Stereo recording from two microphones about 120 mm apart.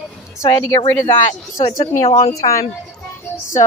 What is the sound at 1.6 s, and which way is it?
Speech, 75° left (ahead or behind).